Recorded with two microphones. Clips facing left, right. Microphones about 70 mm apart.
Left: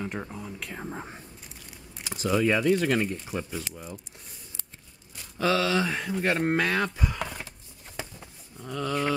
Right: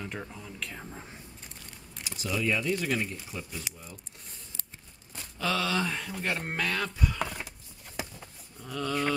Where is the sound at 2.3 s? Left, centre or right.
Left.